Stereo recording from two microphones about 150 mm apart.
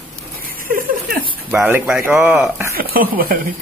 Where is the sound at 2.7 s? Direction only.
75° right (ahead or behind).